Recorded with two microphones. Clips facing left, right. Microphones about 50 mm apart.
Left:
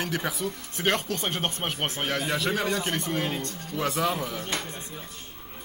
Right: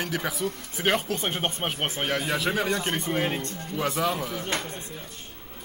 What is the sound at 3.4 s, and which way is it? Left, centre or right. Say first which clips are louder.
Speech: right 1 dB; right.